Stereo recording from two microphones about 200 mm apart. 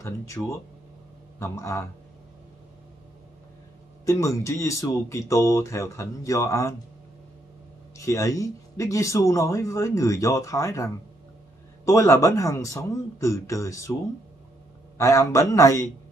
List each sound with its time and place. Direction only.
0.0 s speech: 15° left (ahead or behind)
4.0 s speech: 15° left (ahead or behind)
8.0 s speech: 15° left (ahead or behind)
15.0 s speech: 15° left (ahead or behind)